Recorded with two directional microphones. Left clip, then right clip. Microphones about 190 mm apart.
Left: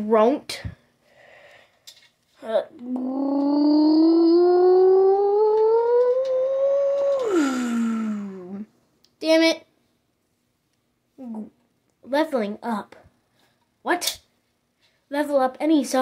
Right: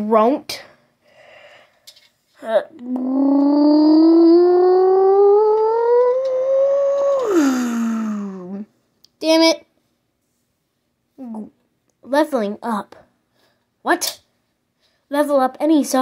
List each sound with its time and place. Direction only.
0.1 s a sound: 10° right (ahead or behind)
12.0 s a woman's voice: 20° right (ahead or behind)
15.0 s a woman's voice: 20° right (ahead or behind)